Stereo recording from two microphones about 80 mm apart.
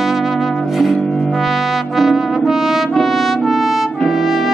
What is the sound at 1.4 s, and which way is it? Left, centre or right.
Brass instrument, centre.